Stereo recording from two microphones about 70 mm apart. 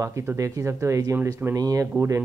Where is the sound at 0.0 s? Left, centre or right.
Right.